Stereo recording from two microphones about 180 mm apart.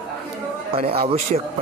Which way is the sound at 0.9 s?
30° right (ahead or behind).